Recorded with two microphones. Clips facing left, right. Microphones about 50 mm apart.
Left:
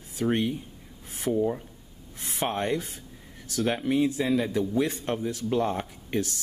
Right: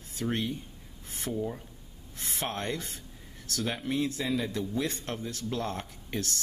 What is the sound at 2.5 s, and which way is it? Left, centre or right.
Speech, centre.